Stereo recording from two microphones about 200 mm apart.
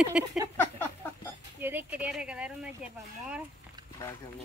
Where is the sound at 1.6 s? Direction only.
10° right (ahead or behind).